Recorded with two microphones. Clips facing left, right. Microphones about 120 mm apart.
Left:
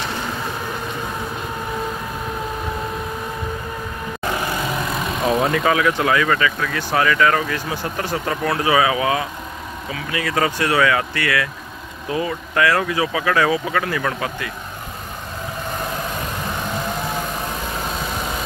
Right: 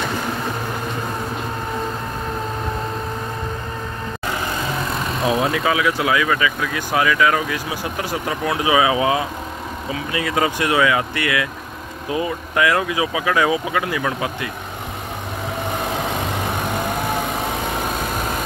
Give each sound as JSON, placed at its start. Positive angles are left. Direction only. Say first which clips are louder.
{"t": 4.8, "sound": "speech", "louder": "even", "side_deg": 0}
{"t": 17.6, "sound": "vehicle", "louder": "right 3 dB", "side_deg": -15}
{"t": 17.9, "sound": "vehicle", "louder": "right 2 dB", "side_deg": -5}